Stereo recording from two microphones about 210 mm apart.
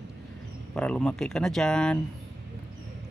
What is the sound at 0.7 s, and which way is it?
Speech, 5° left (ahead or behind).